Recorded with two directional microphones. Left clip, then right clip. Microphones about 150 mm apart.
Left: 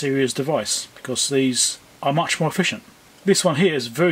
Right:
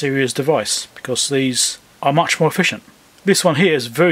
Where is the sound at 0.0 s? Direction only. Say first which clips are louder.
Right 4 dB; 25° right (ahead or behind).